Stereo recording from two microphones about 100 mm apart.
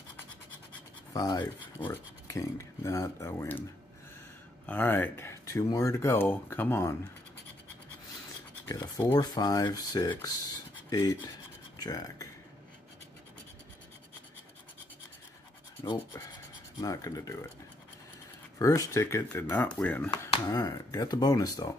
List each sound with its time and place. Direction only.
1.1 s speech: 40° left (ahead or behind); by 3.6 s 25° left (ahead or behind)
4.6 s speech: 20° left (ahead or behind)
8.6 s speech: 40° left (ahead or behind)
16.8 s speech: 35° left (ahead or behind)
18.6 s speech: 35° left (ahead or behind)
19.5 s speech: 15° left (ahead or behind)
20.1 s speech: 40° left (ahead or behind)